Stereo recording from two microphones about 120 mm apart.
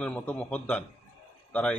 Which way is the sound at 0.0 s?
10° left (ahead or behind).